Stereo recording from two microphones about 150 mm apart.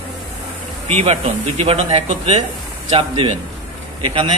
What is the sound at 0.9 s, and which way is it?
A man's voice, 45° right (ahead or behind).